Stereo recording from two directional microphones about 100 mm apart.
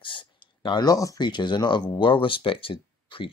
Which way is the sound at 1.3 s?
50° left (ahead or behind).